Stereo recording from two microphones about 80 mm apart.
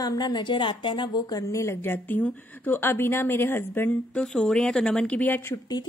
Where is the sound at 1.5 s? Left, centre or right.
Left; by 5.4 s centre.